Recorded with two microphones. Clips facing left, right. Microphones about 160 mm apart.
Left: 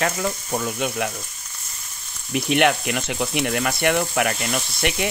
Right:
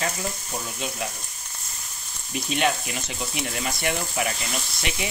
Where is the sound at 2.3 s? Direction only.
65° left (ahead or behind).